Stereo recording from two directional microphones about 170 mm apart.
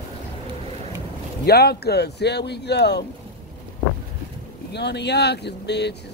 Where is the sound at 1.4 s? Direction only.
70° left (ahead or behind).